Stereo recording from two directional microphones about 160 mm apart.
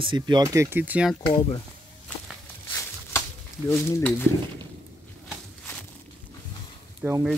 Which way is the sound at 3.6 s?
15° left (ahead or behind).